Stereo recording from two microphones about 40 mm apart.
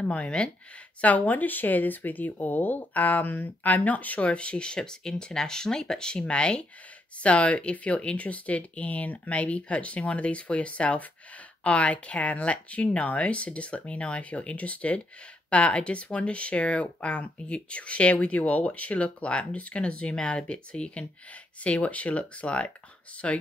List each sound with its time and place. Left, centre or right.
0.4 s speech: left
1.0 s a woman's voice: left
3.6 s speech: left